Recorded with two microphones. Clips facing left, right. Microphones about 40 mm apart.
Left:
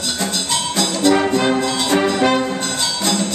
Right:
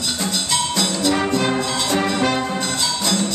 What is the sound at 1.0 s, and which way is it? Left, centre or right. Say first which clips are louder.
Brass instrument: left 5 dB; centre.